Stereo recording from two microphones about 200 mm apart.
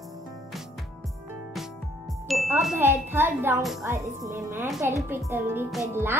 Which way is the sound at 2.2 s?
Centre (ahead or behind).